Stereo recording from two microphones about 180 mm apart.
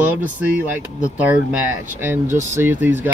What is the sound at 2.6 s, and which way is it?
Speech, 10° right (ahead or behind).